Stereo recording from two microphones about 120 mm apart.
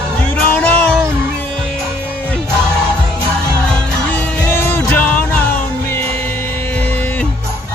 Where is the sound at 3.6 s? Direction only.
5° left (ahead or behind).